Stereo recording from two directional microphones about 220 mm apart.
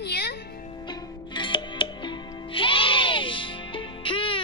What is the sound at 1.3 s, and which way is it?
Music, 20° left (ahead or behind).